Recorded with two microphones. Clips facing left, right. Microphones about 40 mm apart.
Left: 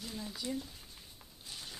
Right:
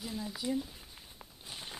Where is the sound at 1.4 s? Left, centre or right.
Right.